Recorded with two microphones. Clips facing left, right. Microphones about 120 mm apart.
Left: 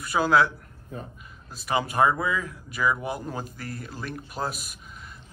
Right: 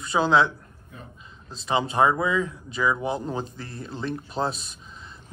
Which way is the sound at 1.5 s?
25° right (ahead or behind).